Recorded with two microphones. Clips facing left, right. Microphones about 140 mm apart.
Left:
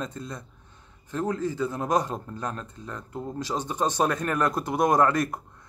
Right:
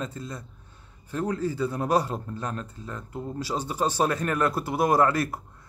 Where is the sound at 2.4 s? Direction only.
40° left (ahead or behind).